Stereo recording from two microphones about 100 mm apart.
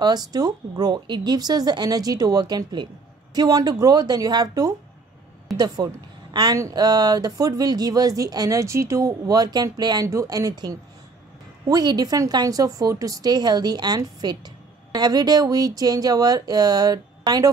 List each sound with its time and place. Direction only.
0.0 s a woman's voice: 40° right (ahead or behind)
10.0 s a woman's voice: 30° right (ahead or behind)